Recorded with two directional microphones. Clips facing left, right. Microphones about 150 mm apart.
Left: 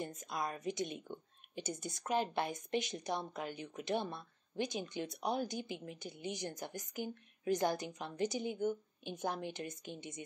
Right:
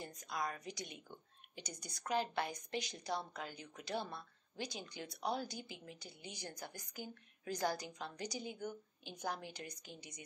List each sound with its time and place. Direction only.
0.0 s a woman's voice: 20° left (ahead or behind)